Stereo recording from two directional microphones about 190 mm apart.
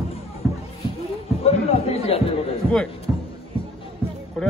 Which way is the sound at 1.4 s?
30° left (ahead or behind).